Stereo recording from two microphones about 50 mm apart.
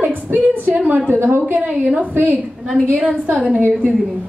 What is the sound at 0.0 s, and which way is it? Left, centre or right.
A woman's voice, right.